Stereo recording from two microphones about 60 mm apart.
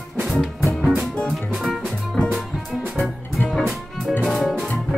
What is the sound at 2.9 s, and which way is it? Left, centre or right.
Music, centre.